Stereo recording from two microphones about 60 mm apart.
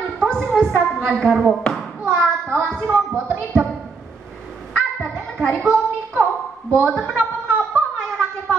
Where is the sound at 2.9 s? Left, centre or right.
Right.